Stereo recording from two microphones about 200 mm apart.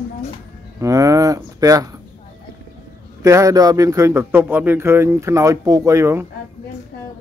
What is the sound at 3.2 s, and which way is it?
Speech, 15° right (ahead or behind).